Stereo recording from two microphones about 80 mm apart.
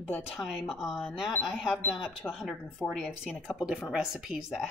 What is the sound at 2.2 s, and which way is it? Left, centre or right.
Speech, left.